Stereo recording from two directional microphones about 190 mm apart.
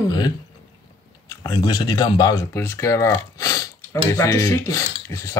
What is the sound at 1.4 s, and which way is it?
Speech, 20° left (ahead or behind).